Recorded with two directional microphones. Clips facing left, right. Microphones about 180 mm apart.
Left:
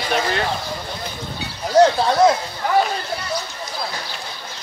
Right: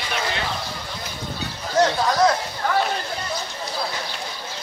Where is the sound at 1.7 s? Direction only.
30° left (ahead or behind).